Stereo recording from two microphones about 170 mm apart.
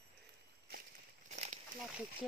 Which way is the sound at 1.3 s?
40° right (ahead or behind).